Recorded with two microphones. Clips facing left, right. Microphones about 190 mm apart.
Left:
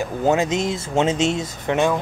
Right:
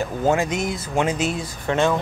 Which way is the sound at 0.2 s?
20° left (ahead or behind).